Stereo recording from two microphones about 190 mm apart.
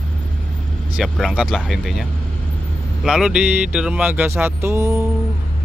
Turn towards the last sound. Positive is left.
turn(degrees=-15)  # may be behind; listen again after turning